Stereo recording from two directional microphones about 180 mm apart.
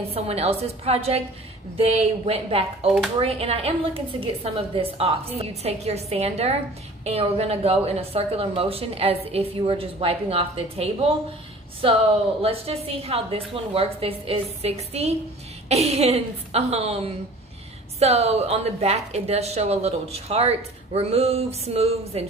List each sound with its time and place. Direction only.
0.1 s a woman's voice: 35° right (ahead or behind)